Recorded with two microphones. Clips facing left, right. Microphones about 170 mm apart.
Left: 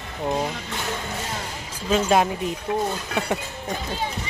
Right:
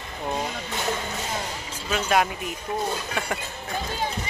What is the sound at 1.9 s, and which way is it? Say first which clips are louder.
Speech: left 4 dB; 30° left (ahead or behind).